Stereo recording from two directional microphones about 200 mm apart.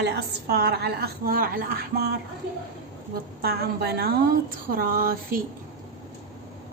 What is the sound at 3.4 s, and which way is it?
A woman's voice, 55° right (ahead or behind).